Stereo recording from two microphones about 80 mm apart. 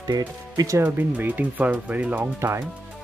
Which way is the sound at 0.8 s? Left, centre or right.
Right.